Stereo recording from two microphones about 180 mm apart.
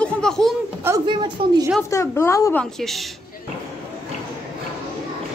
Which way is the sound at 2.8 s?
Centre (ahead or behind).